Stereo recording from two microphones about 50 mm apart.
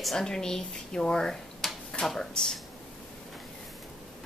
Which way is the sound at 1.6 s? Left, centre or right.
Centre.